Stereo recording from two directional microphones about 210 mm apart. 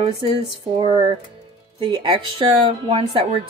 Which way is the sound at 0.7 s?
25° right (ahead or behind).